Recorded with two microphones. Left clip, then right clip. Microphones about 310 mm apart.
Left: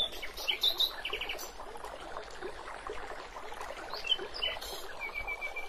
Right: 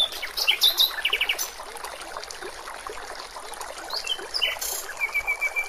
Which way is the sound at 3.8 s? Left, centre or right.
Right.